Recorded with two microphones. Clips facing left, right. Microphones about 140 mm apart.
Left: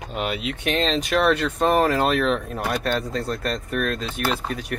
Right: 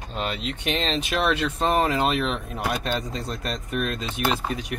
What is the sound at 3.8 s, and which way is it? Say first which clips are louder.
Speech: left 3 dB; 45° left (ahead or behind).